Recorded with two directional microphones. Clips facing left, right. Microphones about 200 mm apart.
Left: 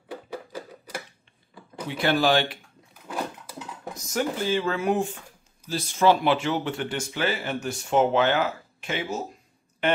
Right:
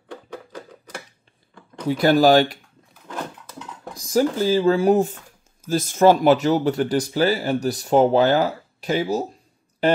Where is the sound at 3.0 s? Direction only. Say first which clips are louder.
Even; 10° left (ahead or behind).